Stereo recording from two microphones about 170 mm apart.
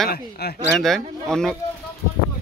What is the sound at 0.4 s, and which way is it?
Speech, 70° left (ahead or behind).